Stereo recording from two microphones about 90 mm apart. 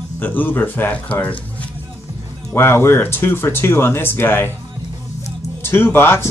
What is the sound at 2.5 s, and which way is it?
Speech, 25° left (ahead or behind).